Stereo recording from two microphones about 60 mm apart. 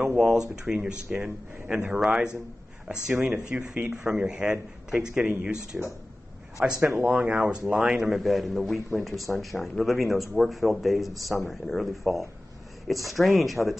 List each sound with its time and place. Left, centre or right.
0.1 s speech: centre
6.8 s speech: right
7.1 s a man's voice: centre